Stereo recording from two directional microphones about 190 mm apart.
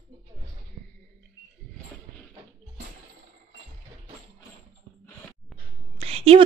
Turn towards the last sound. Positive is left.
turn(degrees=-30)  # may be behind; listen again after turning